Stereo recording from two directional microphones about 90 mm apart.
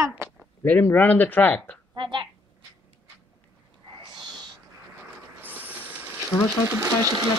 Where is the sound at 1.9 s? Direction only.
60° right (ahead or behind).